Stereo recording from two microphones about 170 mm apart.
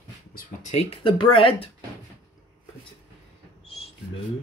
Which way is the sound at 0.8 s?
30° left (ahead or behind).